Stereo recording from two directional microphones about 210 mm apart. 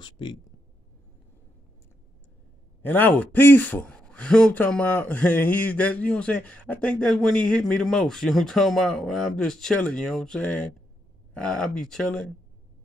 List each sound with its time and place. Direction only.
0.0 s speech: 20° left (ahead or behind)
2.8 s speech: 10° left (ahead or behind)